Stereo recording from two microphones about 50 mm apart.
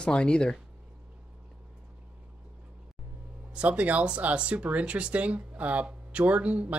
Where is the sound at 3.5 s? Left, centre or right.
Right.